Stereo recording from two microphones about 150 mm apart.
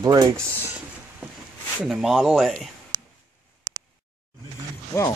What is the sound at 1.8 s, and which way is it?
Speech, centre (ahead or behind).